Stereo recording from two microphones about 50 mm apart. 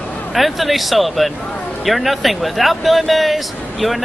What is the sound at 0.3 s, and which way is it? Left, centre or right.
Speech, centre.